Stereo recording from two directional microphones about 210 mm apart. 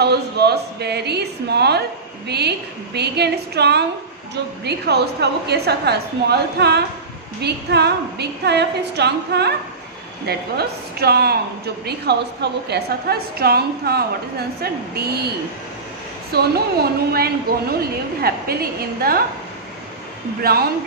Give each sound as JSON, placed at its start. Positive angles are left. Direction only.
{"t": 0.0, "sound": "a woman's voice", "side_deg": -50}
{"t": 20.4, "sound": "a woman's voice", "side_deg": -50}